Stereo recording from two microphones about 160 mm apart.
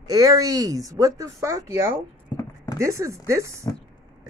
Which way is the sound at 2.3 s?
20° left (ahead or behind).